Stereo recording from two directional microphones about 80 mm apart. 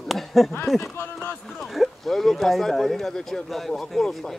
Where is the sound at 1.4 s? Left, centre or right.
Centre.